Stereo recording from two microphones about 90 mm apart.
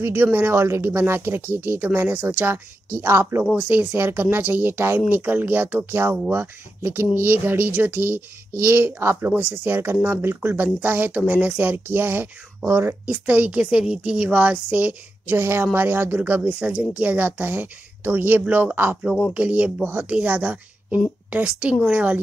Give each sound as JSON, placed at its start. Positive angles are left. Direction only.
{"t": 0.0, "sound": "a woman's voice", "side_deg": -25}